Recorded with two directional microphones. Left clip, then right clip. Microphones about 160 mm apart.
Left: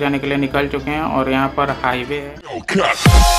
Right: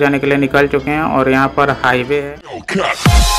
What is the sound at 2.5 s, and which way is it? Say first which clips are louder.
Music: left 1 dB; centre (ahead or behind).